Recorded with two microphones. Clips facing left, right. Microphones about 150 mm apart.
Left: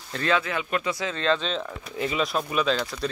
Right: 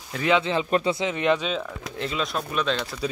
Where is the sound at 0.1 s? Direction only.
15° right (ahead or behind).